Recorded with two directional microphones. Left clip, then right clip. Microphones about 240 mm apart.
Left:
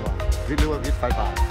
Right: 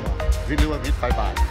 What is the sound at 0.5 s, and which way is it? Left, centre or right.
Speech, centre.